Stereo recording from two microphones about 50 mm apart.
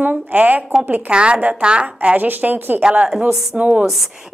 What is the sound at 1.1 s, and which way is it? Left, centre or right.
A woman's voice, right.